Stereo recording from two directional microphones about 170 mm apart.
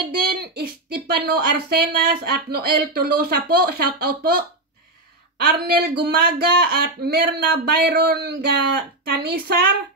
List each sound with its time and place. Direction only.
0.0 s speech: 65° right (ahead or behind)